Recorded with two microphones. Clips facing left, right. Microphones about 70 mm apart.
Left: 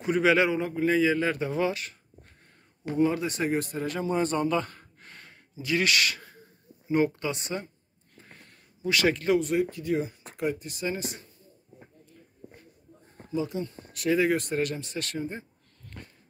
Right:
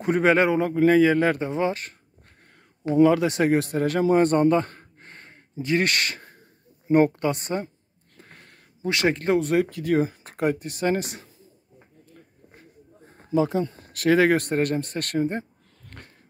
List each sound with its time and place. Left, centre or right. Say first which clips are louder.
0.0 s a man's voice: right 3 dB; right
1.4 s speech: right 3 dB; right
2.9 s speech: right 8 dB; right
6.9 s a man's voice: right 6 dB; right
8.8 s speech: right 2 dB; right
9.6 s speech: right 5 dB; right
10.0 s speech: right 6 dB; right
13.0 s a sound: right 8 dB; right
14.0 s speech: right 6 dB; right
15.9 s dog: even; right